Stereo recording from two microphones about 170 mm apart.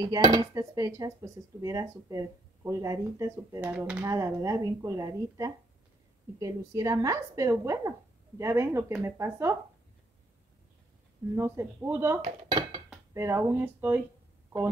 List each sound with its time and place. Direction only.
0.0 s speech: 20° right (ahead or behind)
3.6 s speech: 10° right (ahead or behind)
11.3 s speech: 15° right (ahead or behind)
12.2 s dishes: 30° right (ahead or behind)
13.1 s speech: 15° right (ahead or behind)